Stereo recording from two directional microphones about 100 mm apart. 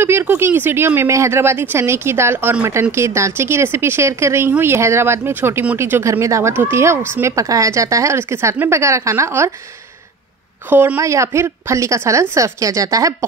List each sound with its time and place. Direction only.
0.0 s speech: 25° right (ahead or behind)
10.7 s speech: 20° right (ahead or behind)
11.0 s a woman's voice: 30° right (ahead or behind)